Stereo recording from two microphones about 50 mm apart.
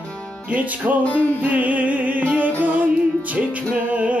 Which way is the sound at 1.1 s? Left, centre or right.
Left.